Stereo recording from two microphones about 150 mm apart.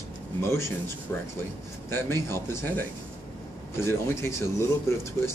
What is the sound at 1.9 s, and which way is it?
Speech, 15° left (ahead or behind).